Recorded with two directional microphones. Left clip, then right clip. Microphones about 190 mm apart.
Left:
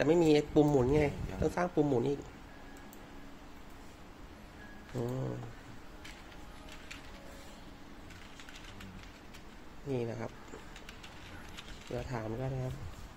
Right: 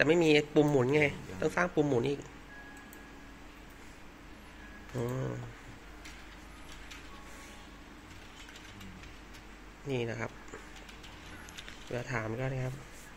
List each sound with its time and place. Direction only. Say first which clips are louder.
0.0 s speech: right 2 dB; 10° left (ahead or behind)
4.9 s speech: right 2 dB; centre (ahead or behind)
9.8 s speech: right 2 dB; 5° left (ahead or behind)
11.9 s speech: right 3 dB; centre (ahead or behind)